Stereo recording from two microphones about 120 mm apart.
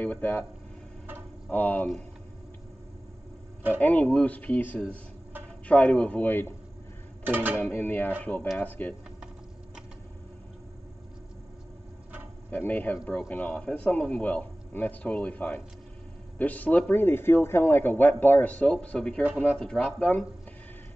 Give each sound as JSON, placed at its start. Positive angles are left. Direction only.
{"t": 0.0, "sound": "a man's voice", "side_deg": 15}
{"t": 1.5, "sound": "a man's voice", "side_deg": 15}
{"t": 3.8, "sound": "a man's voice", "side_deg": 10}
{"t": 7.2, "sound": "speech", "side_deg": -15}
{"t": 7.6, "sound": "a man's voice", "side_deg": 15}
{"t": 12.4, "sound": "a man's voice", "side_deg": 15}